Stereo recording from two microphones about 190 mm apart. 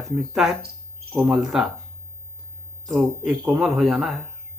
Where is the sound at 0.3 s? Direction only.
5° right (ahead or behind).